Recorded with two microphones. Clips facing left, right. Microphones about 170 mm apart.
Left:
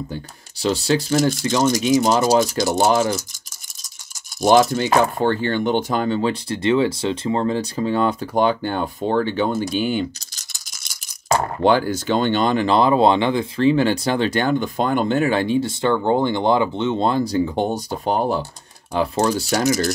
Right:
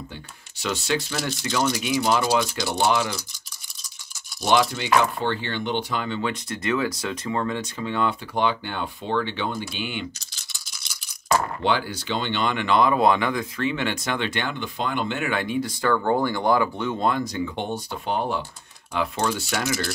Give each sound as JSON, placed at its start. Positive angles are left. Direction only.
{"t": 0.6, "sound": "speech", "side_deg": 35}
{"t": 4.4, "sound": "speech", "side_deg": 45}
{"t": 9.6, "sound": "rattle", "side_deg": 40}
{"t": 11.6, "sound": "speech", "side_deg": 45}